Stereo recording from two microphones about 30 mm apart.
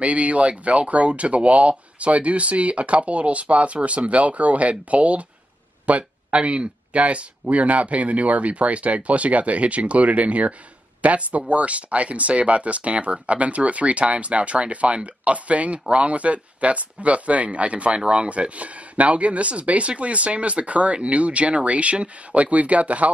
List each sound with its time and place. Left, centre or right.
0.0 s speech: right
18.3 s speech: right